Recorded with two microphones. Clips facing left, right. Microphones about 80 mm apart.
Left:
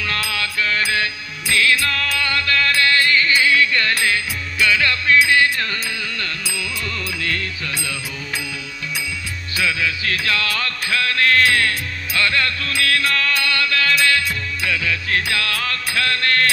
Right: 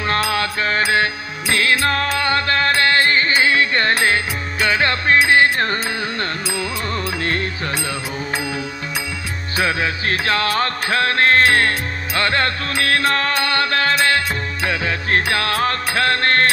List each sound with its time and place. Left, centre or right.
0.0 s music: right
9.6 s music: right